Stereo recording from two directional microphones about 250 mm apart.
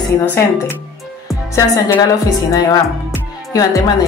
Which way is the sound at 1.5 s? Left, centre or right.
Centre.